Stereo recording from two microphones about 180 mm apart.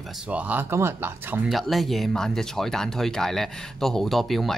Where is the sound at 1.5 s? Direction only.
Centre (ahead or behind).